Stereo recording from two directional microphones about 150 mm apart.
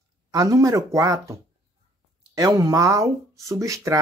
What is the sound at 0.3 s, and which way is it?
Speech, 25° right (ahead or behind).